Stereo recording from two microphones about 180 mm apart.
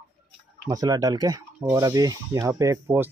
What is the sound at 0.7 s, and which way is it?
Speech, 20° right (ahead or behind).